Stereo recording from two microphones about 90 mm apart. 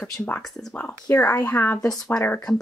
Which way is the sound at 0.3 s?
20° left (ahead or behind).